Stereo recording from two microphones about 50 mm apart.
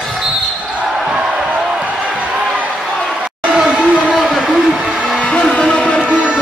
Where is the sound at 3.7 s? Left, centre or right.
Centre.